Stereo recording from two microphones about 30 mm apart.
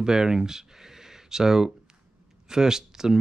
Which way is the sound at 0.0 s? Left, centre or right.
Right.